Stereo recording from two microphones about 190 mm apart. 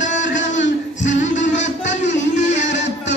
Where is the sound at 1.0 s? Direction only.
40° left (ahead or behind).